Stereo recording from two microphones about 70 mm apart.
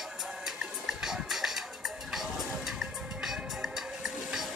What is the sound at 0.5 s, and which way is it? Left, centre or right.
Music, centre.